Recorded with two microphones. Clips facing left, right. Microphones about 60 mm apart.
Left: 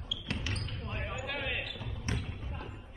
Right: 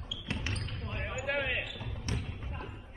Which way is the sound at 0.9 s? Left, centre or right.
Right.